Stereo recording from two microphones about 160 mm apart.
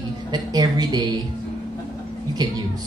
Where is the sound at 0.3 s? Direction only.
25° right (ahead or behind).